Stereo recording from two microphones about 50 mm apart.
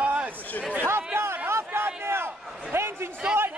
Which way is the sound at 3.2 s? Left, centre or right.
Centre.